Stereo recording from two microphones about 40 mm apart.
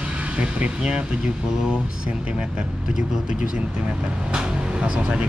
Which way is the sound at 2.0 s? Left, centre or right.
Right.